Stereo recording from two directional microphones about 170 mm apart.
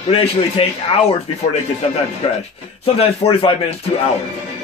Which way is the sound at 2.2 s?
35° left (ahead or behind).